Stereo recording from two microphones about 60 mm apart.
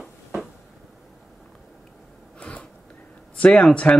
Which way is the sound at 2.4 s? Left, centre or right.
Centre.